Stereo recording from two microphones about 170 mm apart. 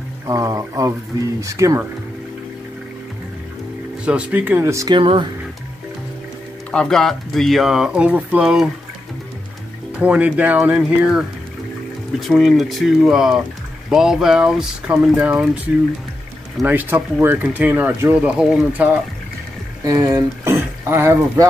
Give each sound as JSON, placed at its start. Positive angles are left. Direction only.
{"t": 0.3, "sound": "speech", "side_deg": -20}
{"t": 4.0, "sound": "speech", "side_deg": -5}
{"t": 4.9, "sound": "speech", "side_deg": -30}
{"t": 6.7, "sound": "speech", "side_deg": 5}
{"t": 9.9, "sound": "speech", "side_deg": -10}
{"t": 19.8, "sound": "speech", "side_deg": -20}